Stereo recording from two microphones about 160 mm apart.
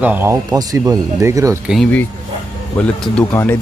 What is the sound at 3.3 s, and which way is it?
Speech, 15° left (ahead or behind).